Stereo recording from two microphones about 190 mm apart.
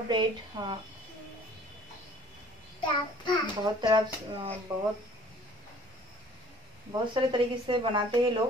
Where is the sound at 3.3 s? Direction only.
25° left (ahead or behind).